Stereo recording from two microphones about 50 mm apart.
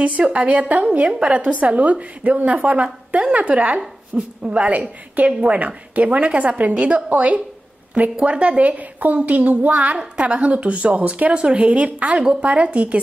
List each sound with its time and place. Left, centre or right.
0.0 s a woman's voice: right
4.1 s a woman's voice: centre